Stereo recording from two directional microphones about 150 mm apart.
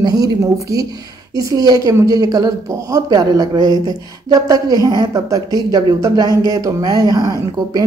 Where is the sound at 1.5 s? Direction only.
25° right (ahead or behind).